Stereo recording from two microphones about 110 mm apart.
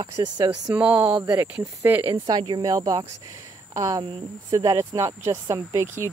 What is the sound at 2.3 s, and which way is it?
A woman's voice, 40° right (ahead or behind).